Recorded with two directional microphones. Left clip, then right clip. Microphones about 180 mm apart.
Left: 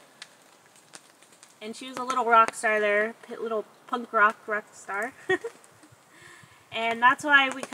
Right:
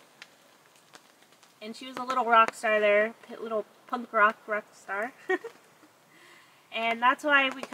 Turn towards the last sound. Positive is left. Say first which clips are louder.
# left 3 dB
turn(degrees=0)  # may be behind; listen again after turning